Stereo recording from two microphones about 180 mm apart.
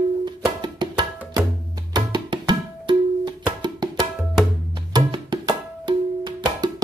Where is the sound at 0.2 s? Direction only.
25° right (ahead or behind).